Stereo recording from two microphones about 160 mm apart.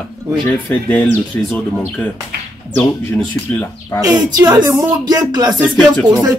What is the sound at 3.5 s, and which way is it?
Speech, 10° left (ahead or behind).